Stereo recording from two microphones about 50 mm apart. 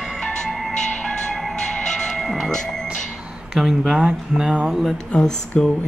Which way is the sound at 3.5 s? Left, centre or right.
Centre.